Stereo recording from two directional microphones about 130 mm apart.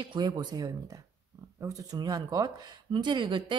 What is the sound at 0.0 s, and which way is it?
A woman's voice, 35° right (ahead or behind).